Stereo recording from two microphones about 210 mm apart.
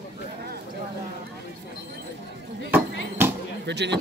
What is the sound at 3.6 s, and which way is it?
Speech, 55° right (ahead or behind).